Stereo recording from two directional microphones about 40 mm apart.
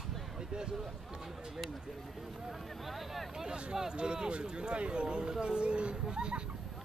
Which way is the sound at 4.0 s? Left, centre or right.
Right.